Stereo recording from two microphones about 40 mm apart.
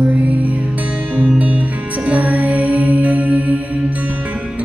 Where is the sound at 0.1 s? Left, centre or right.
Right.